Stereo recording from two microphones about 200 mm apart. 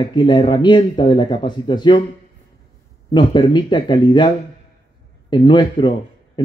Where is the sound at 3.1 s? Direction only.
25° left (ahead or behind).